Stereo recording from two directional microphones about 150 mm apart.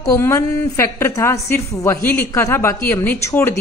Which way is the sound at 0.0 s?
20° left (ahead or behind).